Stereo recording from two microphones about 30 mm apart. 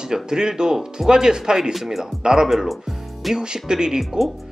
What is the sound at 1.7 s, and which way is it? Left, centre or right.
Speech, centre.